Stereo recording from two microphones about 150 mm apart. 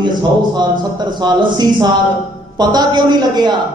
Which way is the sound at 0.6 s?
30° right (ahead or behind).